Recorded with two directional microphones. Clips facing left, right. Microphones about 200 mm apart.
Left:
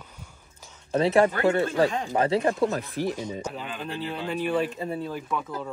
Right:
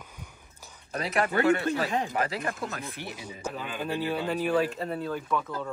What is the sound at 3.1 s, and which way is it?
Speech, 10° right (ahead or behind).